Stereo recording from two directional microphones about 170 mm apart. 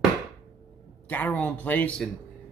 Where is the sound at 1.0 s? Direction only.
10° left (ahead or behind).